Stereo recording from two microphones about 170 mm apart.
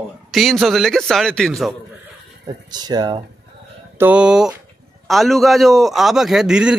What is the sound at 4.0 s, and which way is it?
Speech, 5° right (ahead or behind).